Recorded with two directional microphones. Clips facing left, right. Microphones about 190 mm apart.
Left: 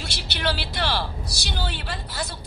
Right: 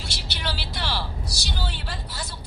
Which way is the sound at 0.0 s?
60° left (ahead or behind).